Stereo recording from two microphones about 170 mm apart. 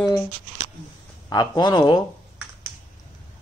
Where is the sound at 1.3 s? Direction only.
25° left (ahead or behind).